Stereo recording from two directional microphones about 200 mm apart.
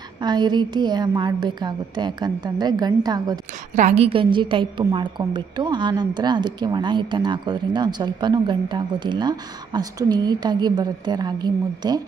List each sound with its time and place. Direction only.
0.2 s a woman's voice: 20° right (ahead or behind)
3.7 s a woman's voice: 35° right (ahead or behind)